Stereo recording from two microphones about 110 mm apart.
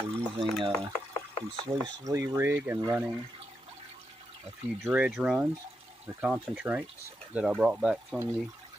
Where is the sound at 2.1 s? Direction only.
25° right (ahead or behind).